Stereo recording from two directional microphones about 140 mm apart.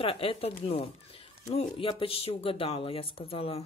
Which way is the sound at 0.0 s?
40° left (ahead or behind).